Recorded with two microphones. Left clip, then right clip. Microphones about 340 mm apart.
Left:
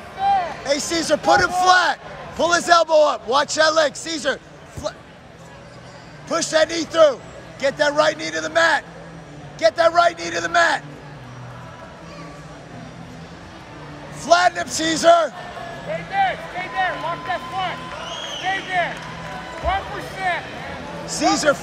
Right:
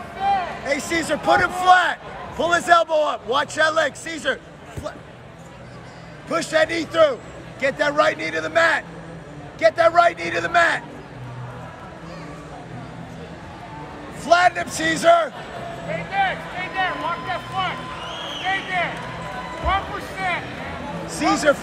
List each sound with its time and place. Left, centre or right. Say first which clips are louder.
0.2 s a sound: left 2 dB; left
0.7 s a man's voice: left 2 dB; centre
6.2 s a man's voice: left 1 dB; centre
14.2 s a man's voice: even; centre
15.9 s vehicle: left 1 dB; left
19.7 s music: right 1 dB; left
21.1 s a man's voice: left 1 dB; centre